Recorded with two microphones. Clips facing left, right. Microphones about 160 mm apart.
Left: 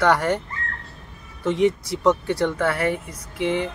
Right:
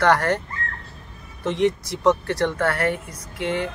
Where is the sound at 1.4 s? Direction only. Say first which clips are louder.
Left 1 dB; 5° left (ahead or behind).